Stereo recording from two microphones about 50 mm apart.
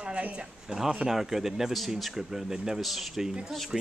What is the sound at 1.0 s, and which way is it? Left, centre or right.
A woman's voice, centre.